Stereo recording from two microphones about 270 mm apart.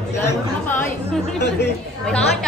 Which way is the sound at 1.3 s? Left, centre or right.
Left.